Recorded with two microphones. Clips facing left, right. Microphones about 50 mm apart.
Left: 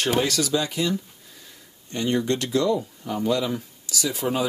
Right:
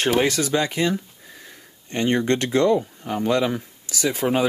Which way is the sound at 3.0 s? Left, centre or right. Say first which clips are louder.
Right 2 dB; right.